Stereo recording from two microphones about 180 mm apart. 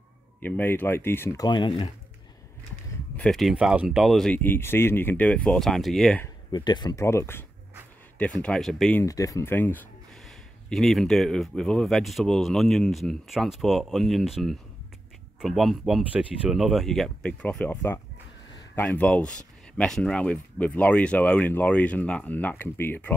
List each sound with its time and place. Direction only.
0.4 s speech: 10° left (ahead or behind); by 1.9 s 25° left (ahead or behind)
3.2 s speech: centre (ahead or behind)
6.2 s speech: 25° left (ahead or behind); by 9.0 s 5° left (ahead or behind)
9.0 s speech: 20° left (ahead or behind)
10.2 s speech: centre (ahead or behind)